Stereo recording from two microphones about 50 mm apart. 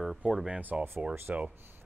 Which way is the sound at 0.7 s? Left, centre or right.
Centre.